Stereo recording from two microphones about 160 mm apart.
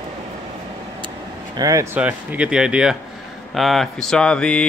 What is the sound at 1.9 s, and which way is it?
Speech, 10° right (ahead or behind).